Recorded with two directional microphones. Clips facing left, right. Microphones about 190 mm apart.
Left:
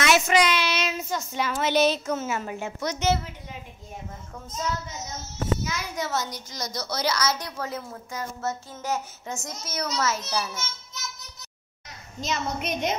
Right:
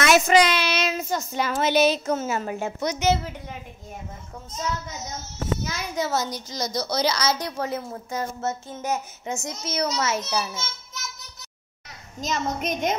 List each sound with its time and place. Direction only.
0.0 s speech: 40° right (ahead or behind)
1.7 s a woman's voice: 5° right (ahead or behind)
2.0 s speech: 35° right (ahead or behind)
2.8 s a woman's voice: 15° right (ahead or behind)
5.7 s a child's voice: 30° right (ahead or behind); by 10.6 s 15° right (ahead or behind)
12.2 s a woman's voice: 45° right (ahead or behind)